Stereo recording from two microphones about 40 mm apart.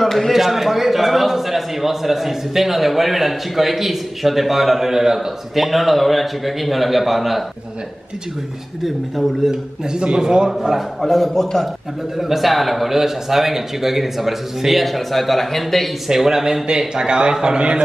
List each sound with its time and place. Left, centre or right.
0.0 s a man's voice: centre
8.8 s a man's voice: centre
9.5 s a man's voice: centre
11.0 s a man's voice: centre
16.1 s a man's voice: centre